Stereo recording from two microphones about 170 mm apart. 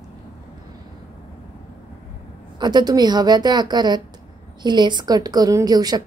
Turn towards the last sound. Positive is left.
turn(degrees=-25)  # may be behind; listen again after turning